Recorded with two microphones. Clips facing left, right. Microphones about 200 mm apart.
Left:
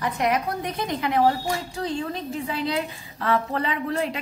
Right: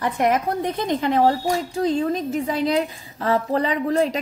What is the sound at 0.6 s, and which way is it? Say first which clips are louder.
Speech: right 5 dB; 25° right (ahead or behind).